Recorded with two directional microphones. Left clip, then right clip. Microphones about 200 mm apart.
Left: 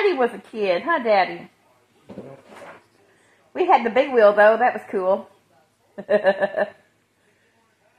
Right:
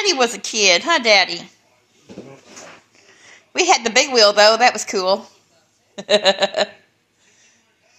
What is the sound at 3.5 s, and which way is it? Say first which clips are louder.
A woman's voice: right 2 dB; 35° right (ahead or behind).